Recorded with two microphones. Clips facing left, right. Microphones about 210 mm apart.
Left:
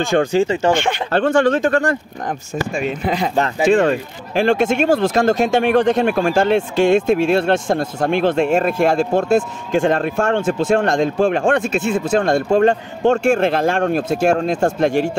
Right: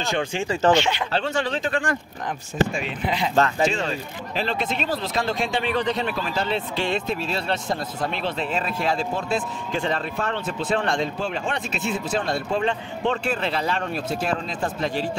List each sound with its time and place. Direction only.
0.0 s speech: 45° left (ahead or behind)
0.7 s speech: 50° left (ahead or behind)